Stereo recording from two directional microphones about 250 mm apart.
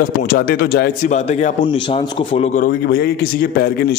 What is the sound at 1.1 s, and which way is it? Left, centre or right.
A man's voice, left.